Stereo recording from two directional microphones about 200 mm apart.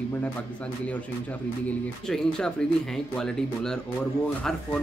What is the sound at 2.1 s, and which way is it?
Speech, 5° left (ahead or behind).